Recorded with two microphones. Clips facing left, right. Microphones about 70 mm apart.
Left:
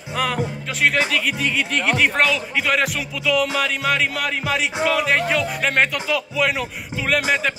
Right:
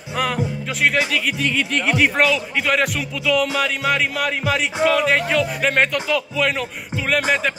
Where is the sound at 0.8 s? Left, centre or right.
Centre.